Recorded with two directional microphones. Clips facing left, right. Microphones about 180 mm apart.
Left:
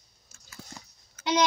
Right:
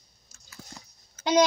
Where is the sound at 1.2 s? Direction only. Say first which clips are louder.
Right 4 dB; 45° right (ahead or behind).